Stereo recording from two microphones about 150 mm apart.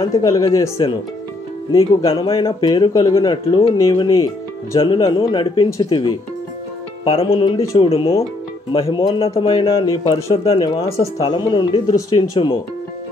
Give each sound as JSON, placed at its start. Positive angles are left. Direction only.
{"t": 0.0, "sound": "speech", "side_deg": 20}
{"t": 1.8, "sound": "speech", "side_deg": 35}
{"t": 4.7, "sound": "speech", "side_deg": 35}